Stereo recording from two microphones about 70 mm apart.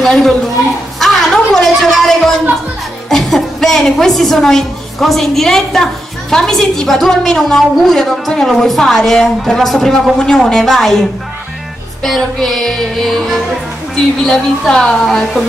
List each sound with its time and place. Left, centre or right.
0.0 s a woman's voice: centre
0.9 s a sound: centre
3.1 s a woman's voice: centre
12.0 s a woman's voice: centre